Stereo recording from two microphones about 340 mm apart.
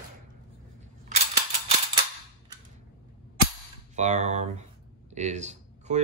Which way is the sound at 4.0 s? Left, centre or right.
Centre.